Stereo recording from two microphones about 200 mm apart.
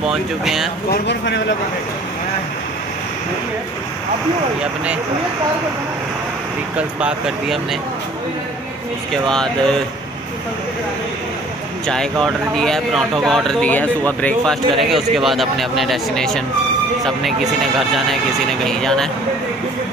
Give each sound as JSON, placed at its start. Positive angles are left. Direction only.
{"t": 0.0, "sound": "speech", "side_deg": 0}
{"t": 1.0, "sound": "speech", "side_deg": 65}
{"t": 7.0, "sound": "speech", "side_deg": -5}
{"t": 9.1, "sound": "speech", "side_deg": 5}
{"t": 11.9, "sound": "speech", "side_deg": 5}